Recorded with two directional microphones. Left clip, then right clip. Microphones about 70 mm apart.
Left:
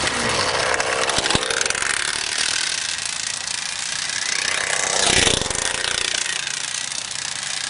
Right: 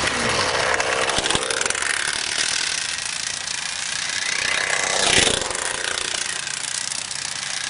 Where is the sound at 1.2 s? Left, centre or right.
Left.